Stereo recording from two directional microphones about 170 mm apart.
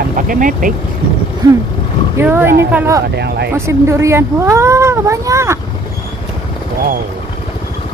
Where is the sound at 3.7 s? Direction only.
15° right (ahead or behind).